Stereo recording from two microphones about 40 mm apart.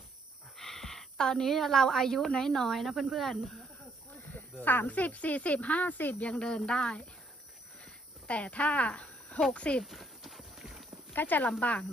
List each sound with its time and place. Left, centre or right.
0.6 s a sound: centre
1.4 s a woman's voice: centre
4.3 s a sound: left
4.8 s speech: left
6.4 s speech: left
7.8 s a sound: left
9.5 s speech: left
9.8 s clip-clop: centre
11.1 s speech: left
11.6 s speech: left